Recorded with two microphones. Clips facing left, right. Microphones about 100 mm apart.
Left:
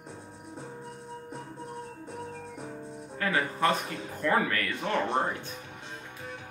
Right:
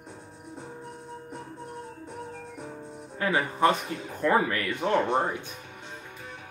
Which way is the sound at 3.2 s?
20° right (ahead or behind).